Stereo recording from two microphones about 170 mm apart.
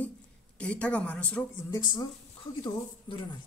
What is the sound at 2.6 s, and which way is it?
Speech, 30° left (ahead or behind).